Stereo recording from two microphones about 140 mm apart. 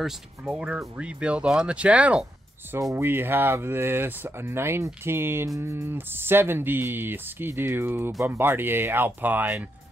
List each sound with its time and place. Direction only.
0.0 s speech: 5° right (ahead or behind)
2.7 s speech: 20° right (ahead or behind)